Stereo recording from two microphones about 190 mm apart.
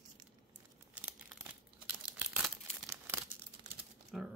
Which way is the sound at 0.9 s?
10° right (ahead or behind).